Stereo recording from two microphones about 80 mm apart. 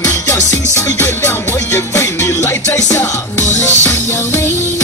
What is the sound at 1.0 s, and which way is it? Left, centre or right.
Music, left.